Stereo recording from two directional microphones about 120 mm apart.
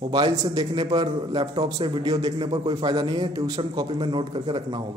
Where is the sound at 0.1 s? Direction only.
35° right (ahead or behind).